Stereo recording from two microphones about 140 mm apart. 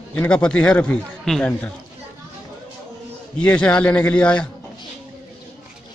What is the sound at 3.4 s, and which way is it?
A man's voice, 10° left (ahead or behind).